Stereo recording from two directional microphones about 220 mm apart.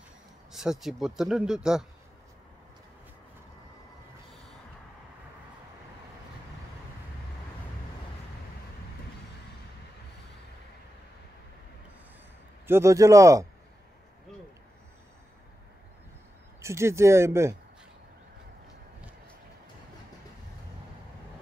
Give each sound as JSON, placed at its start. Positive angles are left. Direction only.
{"t": 0.5, "sound": "speech", "side_deg": 0}
{"t": 12.6, "sound": "speech", "side_deg": -10}
{"t": 16.6, "sound": "speech", "side_deg": -10}